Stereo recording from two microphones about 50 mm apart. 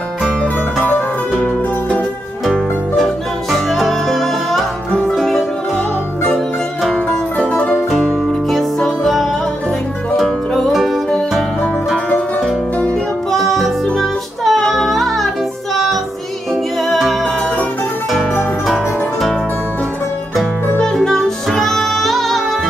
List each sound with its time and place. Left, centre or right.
3.5 s music: centre
7.5 s music: left
8.5 s music: centre
13.3 s music: centre
20.8 s music: centre